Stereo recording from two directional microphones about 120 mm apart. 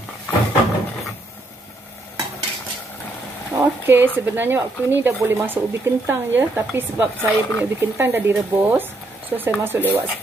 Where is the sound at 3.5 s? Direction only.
15° right (ahead or behind).